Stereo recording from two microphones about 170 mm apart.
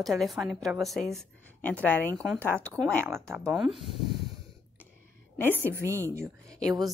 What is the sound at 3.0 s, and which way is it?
Speech, 15° right (ahead or behind).